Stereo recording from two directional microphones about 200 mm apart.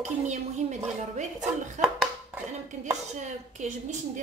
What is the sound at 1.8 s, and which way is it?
Hands, centre (ahead or behind).